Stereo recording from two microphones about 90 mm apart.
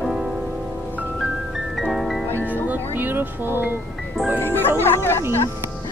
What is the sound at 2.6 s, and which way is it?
Music, 20° right (ahead or behind).